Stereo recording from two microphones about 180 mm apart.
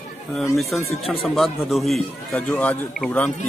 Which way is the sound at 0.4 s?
Centre (ahead or behind).